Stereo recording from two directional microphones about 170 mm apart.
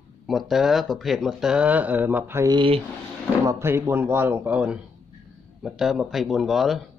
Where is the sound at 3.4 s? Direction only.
15° right (ahead or behind).